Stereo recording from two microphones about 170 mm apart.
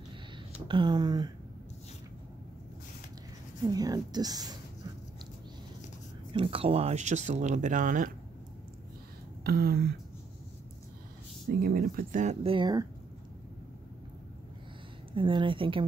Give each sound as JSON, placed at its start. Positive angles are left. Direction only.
{"t": 0.7, "sound": "a woman's voice", "side_deg": -25}
{"t": 3.6, "sound": "a woman's voice", "side_deg": -20}
{"t": 6.3, "sound": "speech", "side_deg": -35}
{"t": 9.4, "sound": "speech", "side_deg": -65}
{"t": 11.6, "sound": "speech", "side_deg": -60}
{"t": 12.4, "sound": "a woman's voice", "side_deg": -25}
{"t": 15.1, "sound": "a woman's voice", "side_deg": -30}